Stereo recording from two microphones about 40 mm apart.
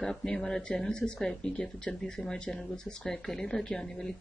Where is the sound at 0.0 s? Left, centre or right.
Centre.